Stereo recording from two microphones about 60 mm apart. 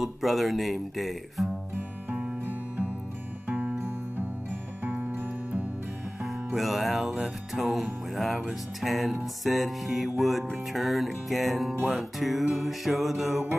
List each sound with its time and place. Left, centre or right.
0.0 s music: centre
1.8 s music: right
4.8 s music: right
6.2 s music: centre